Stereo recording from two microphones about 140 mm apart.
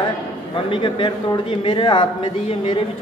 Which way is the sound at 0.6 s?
40° left (ahead or behind).